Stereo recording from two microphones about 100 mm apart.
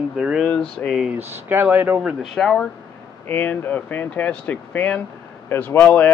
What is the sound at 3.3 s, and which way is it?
Speech, 20° left (ahead or behind).